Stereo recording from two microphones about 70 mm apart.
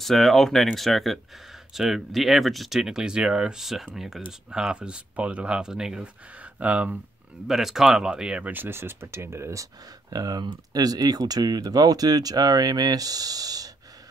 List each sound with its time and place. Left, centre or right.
0.0 s speech: centre
6.4 s speech: right
7.4 s speech: centre
8.5 s speech: right
10.0 s speech: right